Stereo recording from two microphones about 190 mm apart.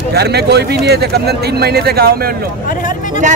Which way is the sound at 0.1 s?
60° right (ahead or behind).